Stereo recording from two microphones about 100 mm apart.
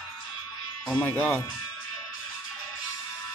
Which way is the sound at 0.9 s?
15° left (ahead or behind).